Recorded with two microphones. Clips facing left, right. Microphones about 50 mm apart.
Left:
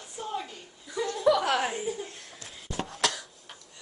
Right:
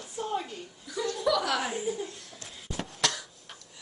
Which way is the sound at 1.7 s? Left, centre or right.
Centre.